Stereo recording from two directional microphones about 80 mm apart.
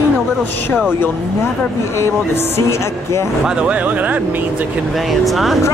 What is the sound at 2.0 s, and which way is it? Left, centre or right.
Speech, left.